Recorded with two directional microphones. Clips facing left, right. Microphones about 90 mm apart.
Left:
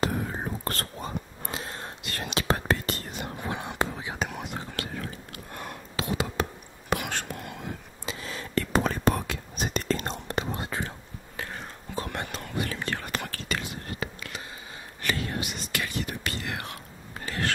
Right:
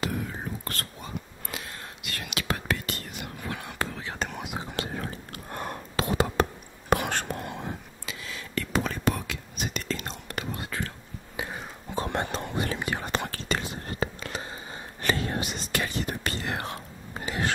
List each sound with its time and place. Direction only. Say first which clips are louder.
0.0 s whispering: left 3 dB; 35° left (ahead or behind); by 4.2 s 15° left (ahead or behind)
4.2 s whispering: even; centre (ahead or behind)
4.9 s whispering: right 2 dB; 35° right (ahead or behind)
8.0 s whispering: left 3 dB; 35° left (ahead or behind)
10.2 s whispering: left 4 dB; 25° left (ahead or behind)
11.3 s whispering: right 2 dB; 15° right (ahead or behind)
11.9 s whispering: right 4 dB; 25° right (ahead or behind)
17.2 s a sound: right 1 dB; 15° right (ahead or behind)